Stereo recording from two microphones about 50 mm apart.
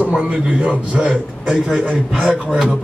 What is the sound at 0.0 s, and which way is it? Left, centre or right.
A man's voice, right.